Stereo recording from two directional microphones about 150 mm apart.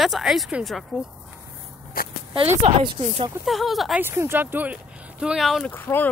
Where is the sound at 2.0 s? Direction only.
80° left.